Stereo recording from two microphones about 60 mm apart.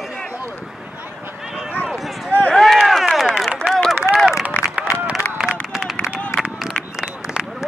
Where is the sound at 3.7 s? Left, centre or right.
Centre.